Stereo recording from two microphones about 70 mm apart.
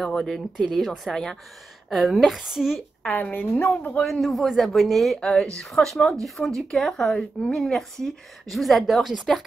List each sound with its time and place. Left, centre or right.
0.0 s speech: centre
3.1 s a woman's voice: left
4.0 s speech: centre